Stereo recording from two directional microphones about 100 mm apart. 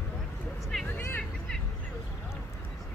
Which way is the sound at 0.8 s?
20° left (ahead or behind).